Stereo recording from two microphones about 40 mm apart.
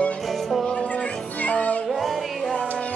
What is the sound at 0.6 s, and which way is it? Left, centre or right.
Music, left.